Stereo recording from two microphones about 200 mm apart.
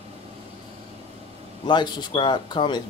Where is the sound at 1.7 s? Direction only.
20° left (ahead or behind).